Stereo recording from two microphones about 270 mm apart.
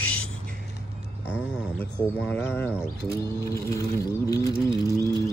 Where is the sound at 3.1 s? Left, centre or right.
Centre.